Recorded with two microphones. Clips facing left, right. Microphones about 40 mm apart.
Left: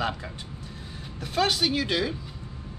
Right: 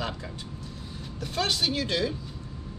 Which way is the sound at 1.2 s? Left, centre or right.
Centre.